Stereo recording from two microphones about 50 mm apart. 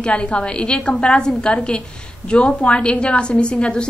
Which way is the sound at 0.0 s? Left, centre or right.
Left.